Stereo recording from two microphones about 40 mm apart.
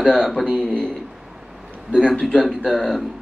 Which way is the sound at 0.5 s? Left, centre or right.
Left.